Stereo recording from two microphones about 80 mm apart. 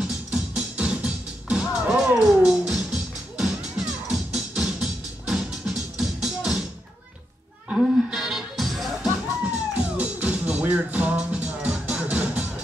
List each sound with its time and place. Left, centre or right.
0.0 s music: centre
7.7 s music: centre
9.8 s music: centre